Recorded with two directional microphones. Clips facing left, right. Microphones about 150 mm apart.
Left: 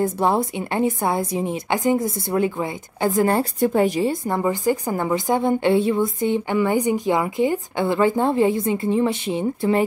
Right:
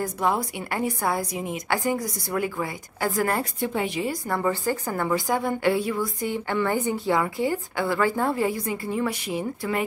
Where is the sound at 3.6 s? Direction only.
40° left (ahead or behind).